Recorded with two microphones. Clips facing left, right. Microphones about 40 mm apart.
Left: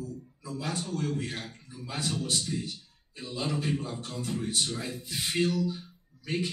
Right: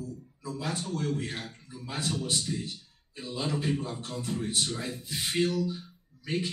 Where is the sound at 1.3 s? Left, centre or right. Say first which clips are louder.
Even; centre.